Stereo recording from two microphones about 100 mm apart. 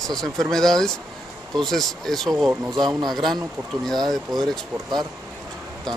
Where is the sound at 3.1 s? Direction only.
5° left (ahead or behind).